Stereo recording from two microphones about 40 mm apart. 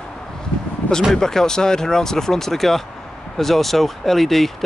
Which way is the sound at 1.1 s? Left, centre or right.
Centre.